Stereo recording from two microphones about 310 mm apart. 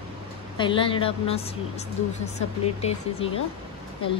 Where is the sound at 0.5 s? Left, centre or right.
Centre.